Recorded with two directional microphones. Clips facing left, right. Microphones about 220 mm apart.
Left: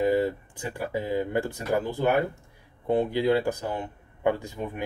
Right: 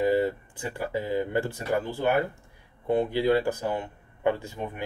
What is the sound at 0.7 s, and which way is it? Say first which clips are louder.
Speech: even; 15° left (ahead or behind).